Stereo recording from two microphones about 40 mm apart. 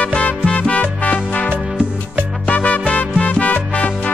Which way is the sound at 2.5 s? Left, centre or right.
Left.